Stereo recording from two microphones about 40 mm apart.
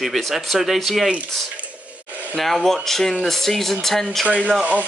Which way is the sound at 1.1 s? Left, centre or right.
Right.